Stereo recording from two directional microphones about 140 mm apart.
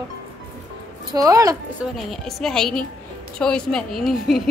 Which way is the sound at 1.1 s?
25° right (ahead or behind).